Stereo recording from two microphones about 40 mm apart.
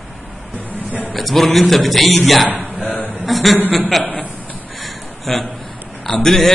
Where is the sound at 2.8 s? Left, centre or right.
Left.